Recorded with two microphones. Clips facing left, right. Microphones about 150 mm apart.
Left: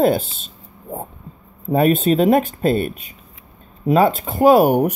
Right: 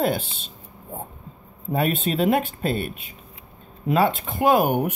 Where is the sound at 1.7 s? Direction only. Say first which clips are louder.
Left 8 dB; 45° left (ahead or behind).